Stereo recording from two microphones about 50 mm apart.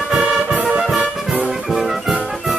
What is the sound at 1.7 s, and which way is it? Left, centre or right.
Music, centre.